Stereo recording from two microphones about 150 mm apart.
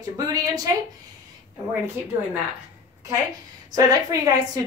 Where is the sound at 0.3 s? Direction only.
25° right (ahead or behind).